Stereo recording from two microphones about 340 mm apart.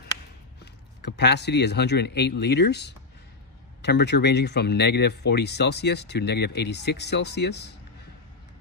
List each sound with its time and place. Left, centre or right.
1.0 s speech: left